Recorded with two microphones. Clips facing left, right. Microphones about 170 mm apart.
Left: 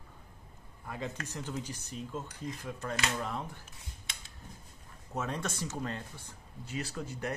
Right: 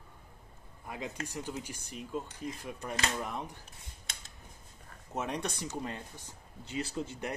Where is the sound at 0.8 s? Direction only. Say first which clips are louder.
Even; 15° right (ahead or behind).